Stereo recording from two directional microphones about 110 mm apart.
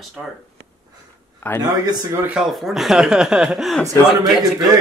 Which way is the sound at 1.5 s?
15° left (ahead or behind).